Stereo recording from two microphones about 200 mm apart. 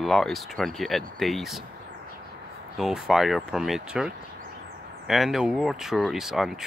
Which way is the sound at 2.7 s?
Centre (ahead or behind).